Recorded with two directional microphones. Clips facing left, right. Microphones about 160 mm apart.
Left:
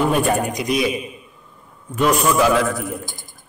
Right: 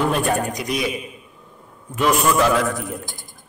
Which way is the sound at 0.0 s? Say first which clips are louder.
Left 2 dB; 10° left (ahead or behind).